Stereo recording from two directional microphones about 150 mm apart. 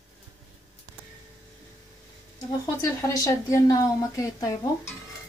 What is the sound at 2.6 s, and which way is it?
Speech, 20° left (ahead or behind).